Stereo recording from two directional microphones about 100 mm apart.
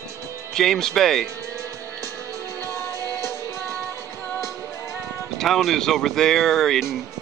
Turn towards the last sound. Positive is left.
turn(degrees=0)  # may be behind; listen again after turning